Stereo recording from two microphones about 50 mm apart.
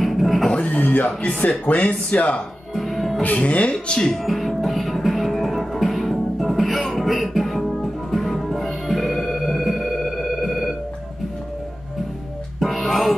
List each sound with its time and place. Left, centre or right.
0.0 s neigh: centre
0.6 s speech: left
2.7 s music: centre
3.3 s speech: left
4.1 s music: centre
12.5 s music: centre